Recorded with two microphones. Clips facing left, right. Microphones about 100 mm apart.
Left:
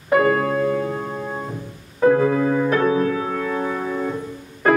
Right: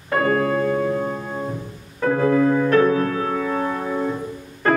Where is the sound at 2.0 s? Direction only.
5° left (ahead or behind).